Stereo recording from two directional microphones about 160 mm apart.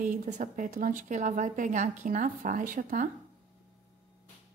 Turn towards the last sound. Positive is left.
turn(degrees=-55)  # may be behind; listen again after turning